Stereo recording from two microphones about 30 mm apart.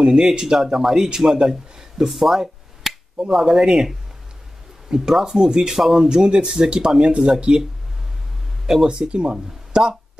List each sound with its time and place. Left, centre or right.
0.0 s a man's voice: right
2.8 s finger snapping: centre
3.3 s a man's voice: centre
6.0 s speech: right
8.8 s speech: right